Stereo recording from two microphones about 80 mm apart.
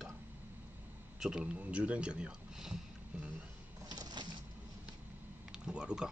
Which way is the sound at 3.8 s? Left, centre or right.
Right.